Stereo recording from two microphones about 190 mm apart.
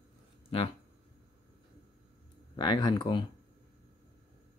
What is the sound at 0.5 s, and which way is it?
Speech, 30° left (ahead or behind).